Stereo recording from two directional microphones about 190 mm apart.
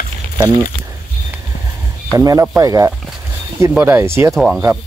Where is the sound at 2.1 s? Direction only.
20° right (ahead or behind).